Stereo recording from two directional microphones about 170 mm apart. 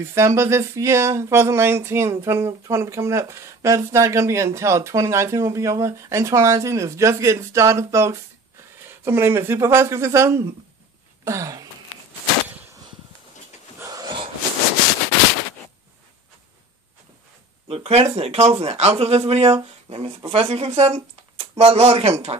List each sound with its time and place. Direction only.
0.0 s speech: 15° right (ahead or behind)
13.7 s a sound: 20° right (ahead or behind)
17.6 s speech: 35° right (ahead or behind)